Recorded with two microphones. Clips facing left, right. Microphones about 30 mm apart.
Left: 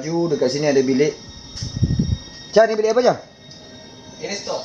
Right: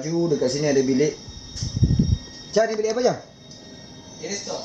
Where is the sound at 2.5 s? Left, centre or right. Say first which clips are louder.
Left 6 dB; left.